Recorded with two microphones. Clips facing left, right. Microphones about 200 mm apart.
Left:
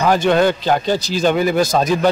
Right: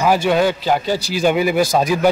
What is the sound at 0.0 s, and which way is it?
A man's voice, 10° right (ahead or behind).